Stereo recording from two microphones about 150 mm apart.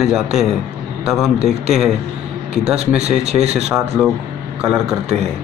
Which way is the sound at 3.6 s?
5° right (ahead or behind).